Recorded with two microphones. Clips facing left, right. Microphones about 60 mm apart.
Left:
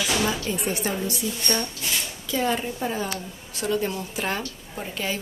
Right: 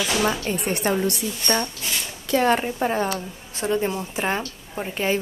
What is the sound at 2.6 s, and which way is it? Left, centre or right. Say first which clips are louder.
Speech: right 5 dB; right.